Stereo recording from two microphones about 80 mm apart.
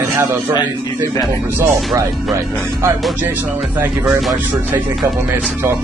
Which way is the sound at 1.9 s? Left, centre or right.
Right.